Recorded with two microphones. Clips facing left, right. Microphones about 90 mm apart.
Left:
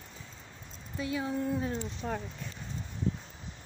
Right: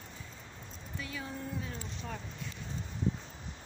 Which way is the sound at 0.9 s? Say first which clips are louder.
Left 9 dB; 25° left (ahead or behind).